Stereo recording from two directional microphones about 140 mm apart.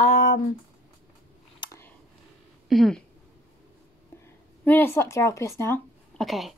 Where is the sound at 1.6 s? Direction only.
25° left (ahead or behind).